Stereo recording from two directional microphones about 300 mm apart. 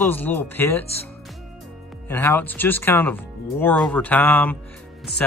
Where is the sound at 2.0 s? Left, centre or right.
Centre.